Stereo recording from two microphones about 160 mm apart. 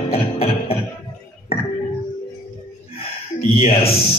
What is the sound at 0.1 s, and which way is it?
Music, 40° left (ahead or behind).